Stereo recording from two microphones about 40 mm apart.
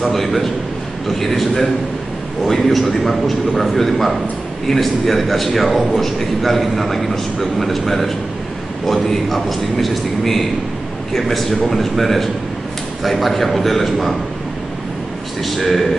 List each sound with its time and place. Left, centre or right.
0.0 s a man's voice: centre
15.4 s a man's voice: centre